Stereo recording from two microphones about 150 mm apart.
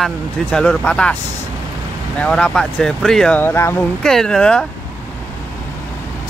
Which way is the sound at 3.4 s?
15° left (ahead or behind).